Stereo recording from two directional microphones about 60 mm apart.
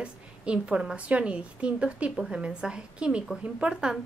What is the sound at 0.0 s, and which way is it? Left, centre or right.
A woman's voice, centre.